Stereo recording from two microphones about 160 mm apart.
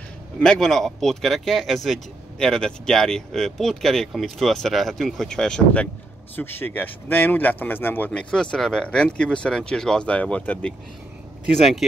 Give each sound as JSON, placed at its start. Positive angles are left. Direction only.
{"t": 0.4, "sound": "speech", "side_deg": 0}